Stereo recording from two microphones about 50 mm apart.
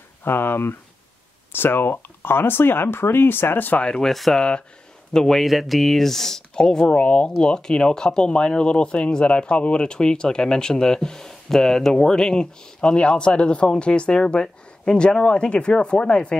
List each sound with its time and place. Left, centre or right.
0.2 s speech: left
3.8 s speech: centre
4.1 s speech: centre
4.4 s speech: centre